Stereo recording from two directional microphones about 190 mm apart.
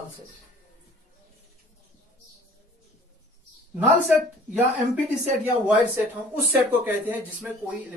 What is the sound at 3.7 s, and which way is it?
Speech, 5° right (ahead or behind).